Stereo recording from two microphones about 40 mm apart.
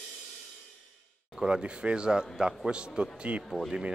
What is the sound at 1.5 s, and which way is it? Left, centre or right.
A man's voice, right.